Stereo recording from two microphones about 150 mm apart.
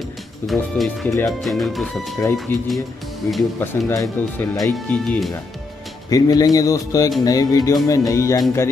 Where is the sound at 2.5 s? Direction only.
15° left (ahead or behind).